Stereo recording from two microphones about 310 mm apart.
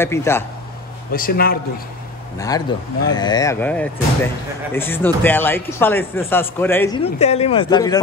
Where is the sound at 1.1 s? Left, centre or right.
Left.